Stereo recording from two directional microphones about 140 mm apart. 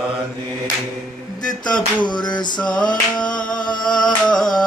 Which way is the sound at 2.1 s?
30° left (ahead or behind).